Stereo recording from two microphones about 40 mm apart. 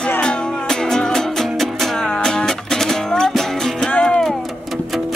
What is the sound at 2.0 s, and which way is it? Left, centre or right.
Music, centre.